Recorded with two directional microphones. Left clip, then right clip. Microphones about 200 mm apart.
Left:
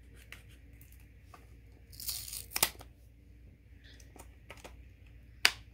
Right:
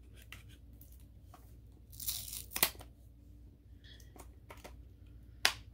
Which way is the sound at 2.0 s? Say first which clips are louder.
Left 2 dB; 5° left (ahead or behind).